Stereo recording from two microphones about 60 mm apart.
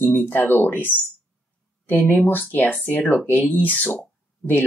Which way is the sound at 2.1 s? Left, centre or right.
Left.